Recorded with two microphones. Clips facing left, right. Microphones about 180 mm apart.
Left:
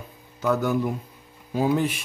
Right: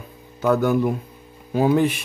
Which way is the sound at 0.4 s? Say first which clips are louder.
Right 4 dB; 60° right (ahead or behind).